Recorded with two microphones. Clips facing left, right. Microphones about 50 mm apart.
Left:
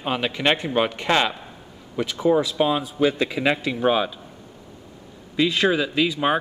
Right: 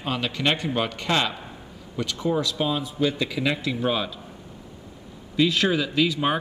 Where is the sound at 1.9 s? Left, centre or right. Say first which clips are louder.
Left 5 dB; centre.